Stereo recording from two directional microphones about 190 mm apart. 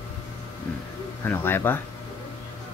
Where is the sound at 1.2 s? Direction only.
10° left (ahead or behind).